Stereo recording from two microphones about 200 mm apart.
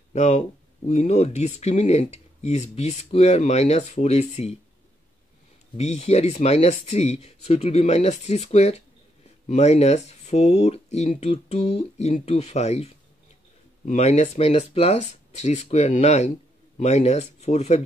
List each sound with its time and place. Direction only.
0.1 s speech: 35° left (ahead or behind)
5.8 s speech: 30° left (ahead or behind)